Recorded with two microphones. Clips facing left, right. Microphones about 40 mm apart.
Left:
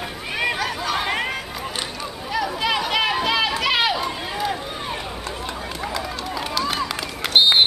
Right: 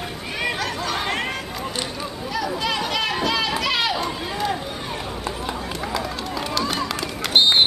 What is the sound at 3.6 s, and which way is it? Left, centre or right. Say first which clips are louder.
Run: left 2 dB; centre.